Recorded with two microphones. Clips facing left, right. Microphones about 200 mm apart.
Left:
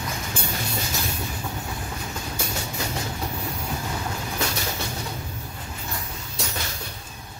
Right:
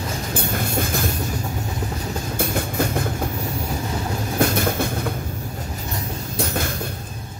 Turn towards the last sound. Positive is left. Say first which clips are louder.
# right 8 dB
turn(degrees=-50)  # may be behind; listen again after turning